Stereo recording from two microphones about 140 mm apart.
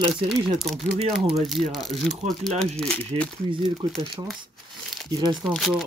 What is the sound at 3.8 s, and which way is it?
Speech, 35° right (ahead or behind).